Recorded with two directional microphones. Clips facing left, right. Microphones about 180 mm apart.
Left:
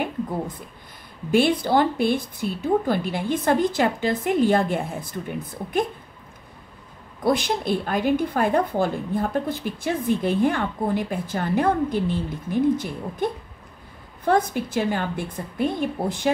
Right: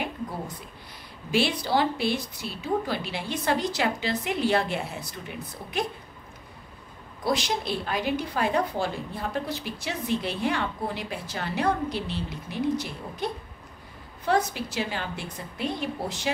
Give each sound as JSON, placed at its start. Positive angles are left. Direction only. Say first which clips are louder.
{"t": 1.3, "sound": "a woman's voice", "louder": "left 6 dB", "side_deg": 55}
{"t": 7.2, "sound": "a woman's voice", "louder": "left 5 dB", "side_deg": 55}